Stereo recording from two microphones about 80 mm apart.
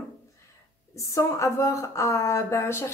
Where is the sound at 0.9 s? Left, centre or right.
Left.